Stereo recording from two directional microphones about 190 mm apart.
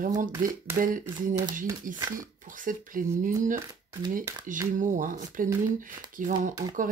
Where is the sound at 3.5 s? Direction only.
20° right (ahead or behind).